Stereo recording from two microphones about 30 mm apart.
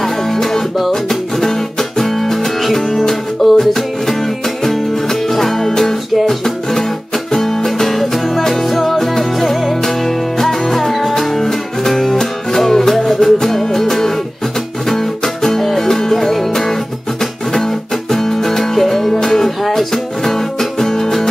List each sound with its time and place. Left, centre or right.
0.0 s music: centre
5.3 s music: centre
15.4 s music: centre
18.2 s music: centre
20.8 s music: centre